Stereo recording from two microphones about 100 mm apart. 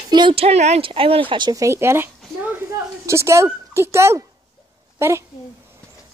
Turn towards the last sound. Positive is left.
turn(degrees=-25)  # may be behind; listen again after turning